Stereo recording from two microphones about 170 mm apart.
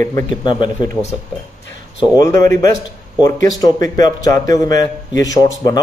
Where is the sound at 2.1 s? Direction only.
20° left (ahead or behind).